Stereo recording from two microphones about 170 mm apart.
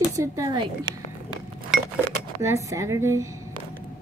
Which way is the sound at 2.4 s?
15° right (ahead or behind).